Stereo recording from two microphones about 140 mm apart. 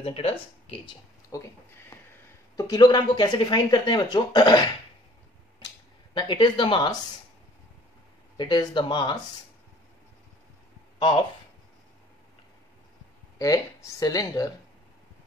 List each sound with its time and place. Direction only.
0.0 s speech: 45° left (ahead or behind)
1.3 s speech: 25° left (ahead or behind)
2.5 s speech: 30° left (ahead or behind)
6.1 s speech: 35° left (ahead or behind)
8.4 s speech: 35° left (ahead or behind)
13.4 s speech: 25° left (ahead or behind)